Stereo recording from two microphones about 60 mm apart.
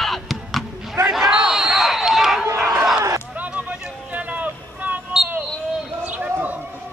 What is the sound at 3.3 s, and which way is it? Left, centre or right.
Vehicle, right.